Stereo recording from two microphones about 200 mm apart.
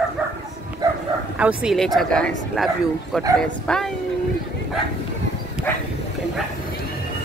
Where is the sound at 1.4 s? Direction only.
5° right (ahead or behind).